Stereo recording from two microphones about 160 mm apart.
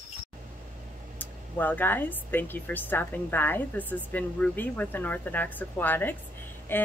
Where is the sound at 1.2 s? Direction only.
10° left (ahead or behind).